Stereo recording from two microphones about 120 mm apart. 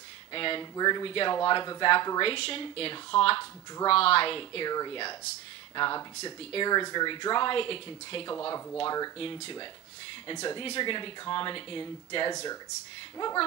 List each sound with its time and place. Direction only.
0.3 s speech: 45° left (ahead or behind)
8.4 s speech: 25° left (ahead or behind)